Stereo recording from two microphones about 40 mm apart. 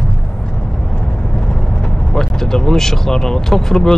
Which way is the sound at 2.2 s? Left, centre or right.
Centre.